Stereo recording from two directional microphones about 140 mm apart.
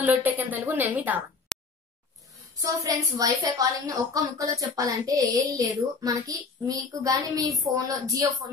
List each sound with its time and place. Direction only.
0.0 s a woman's voice: 10° right (ahead or behind)
1.5 s a sound: 5° left (ahead or behind)
2.6 s a woman's voice: 25° right (ahead or behind)